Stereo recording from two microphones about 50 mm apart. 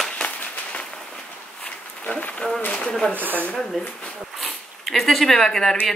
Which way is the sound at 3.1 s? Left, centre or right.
Right.